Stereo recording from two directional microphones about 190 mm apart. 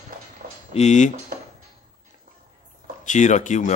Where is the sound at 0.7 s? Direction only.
35° left (ahead or behind).